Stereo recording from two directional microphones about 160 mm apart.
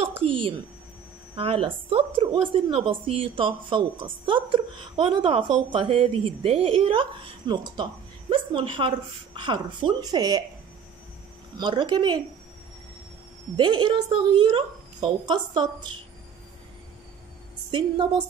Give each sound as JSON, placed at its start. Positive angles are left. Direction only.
{"t": 0.2, "sound": "a woman's voice", "side_deg": -35}
{"t": 11.5, "sound": "a woman's voice", "side_deg": -30}
{"t": 13.6, "sound": "a woman's voice", "side_deg": -25}
{"t": 17.6, "sound": "a woman's voice", "side_deg": -30}